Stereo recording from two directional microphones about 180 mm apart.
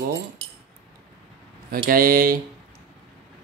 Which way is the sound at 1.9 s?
50° right (ahead or behind).